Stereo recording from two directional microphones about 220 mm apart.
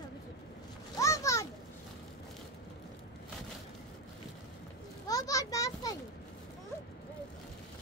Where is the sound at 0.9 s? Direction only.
15° left (ahead or behind).